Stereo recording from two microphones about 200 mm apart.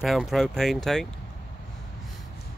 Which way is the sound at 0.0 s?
Centre (ahead or behind).